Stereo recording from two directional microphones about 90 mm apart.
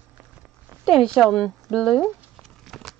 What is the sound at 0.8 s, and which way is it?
Speech, 5° left (ahead or behind).